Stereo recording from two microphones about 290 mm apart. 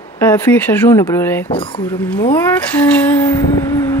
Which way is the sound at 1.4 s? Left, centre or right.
Centre.